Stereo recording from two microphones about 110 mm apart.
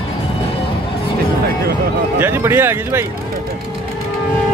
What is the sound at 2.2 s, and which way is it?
Speech, 20° right (ahead or behind).